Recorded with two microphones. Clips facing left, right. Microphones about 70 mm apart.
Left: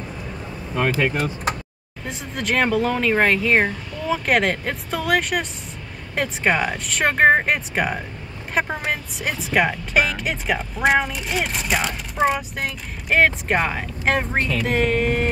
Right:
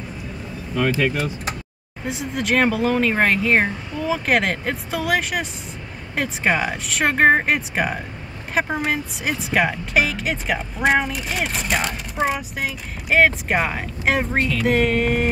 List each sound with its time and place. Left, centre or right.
0.7 s speech: left
1.1 s speech: left
2.0 s speech: centre